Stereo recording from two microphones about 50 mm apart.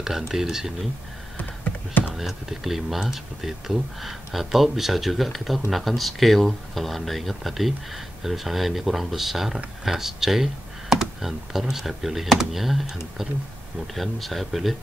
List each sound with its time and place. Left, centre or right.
0.0 s speech: centre
1.4 s computer keyboard: left
2.1 s speech: centre